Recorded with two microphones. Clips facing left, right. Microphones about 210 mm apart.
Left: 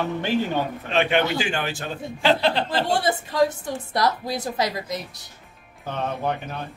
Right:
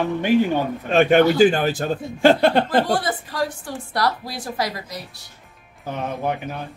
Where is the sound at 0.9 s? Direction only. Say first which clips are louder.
Right 8 dB; 45° right (ahead or behind).